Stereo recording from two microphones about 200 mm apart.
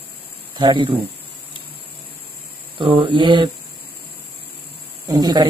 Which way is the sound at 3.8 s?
50° left (ahead or behind).